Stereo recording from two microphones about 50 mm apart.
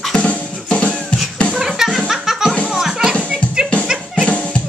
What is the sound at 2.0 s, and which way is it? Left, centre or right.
Music, centre.